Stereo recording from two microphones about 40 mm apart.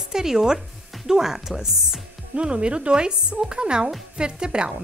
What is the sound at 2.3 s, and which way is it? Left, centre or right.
Speech, right.